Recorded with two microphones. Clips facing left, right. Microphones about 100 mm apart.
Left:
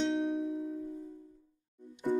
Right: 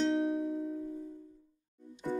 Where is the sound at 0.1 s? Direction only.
Centre (ahead or behind).